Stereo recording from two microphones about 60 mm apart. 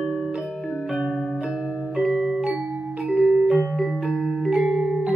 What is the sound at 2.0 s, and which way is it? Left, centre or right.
Music, centre.